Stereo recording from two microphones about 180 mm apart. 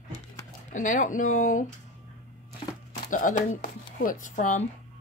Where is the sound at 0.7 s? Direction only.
45° left (ahead or behind).